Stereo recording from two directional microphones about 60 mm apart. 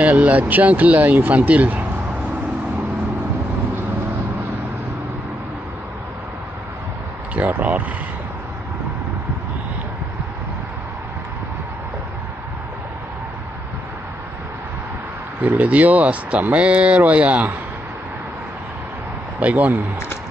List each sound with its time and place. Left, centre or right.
0.0 s speech: right
7.3 s speech: right
15.4 s speech: right
19.4 s speech: right